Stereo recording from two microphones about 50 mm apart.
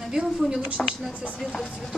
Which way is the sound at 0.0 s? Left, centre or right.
Centre.